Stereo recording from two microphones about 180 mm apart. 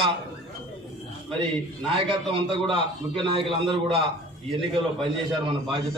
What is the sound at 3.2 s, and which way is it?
Speech, 30° right (ahead or behind).